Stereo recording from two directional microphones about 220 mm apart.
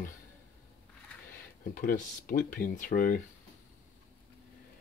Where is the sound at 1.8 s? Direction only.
35° left (ahead or behind).